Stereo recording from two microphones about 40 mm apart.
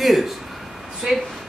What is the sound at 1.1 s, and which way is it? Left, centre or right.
Speech, centre.